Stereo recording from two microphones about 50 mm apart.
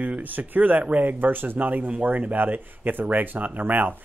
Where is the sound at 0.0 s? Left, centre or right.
Right.